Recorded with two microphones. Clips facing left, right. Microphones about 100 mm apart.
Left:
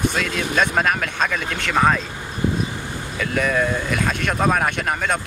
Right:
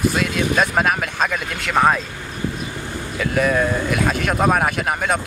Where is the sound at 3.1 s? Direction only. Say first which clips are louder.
Right 2 dB; 5° right (ahead or behind).